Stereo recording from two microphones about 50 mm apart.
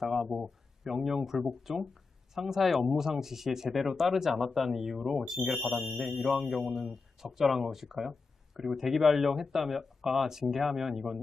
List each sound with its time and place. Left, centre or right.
0.0 s speech: centre